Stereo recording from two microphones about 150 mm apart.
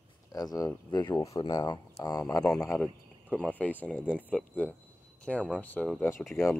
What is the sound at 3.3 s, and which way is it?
Speech, 10° left (ahead or behind).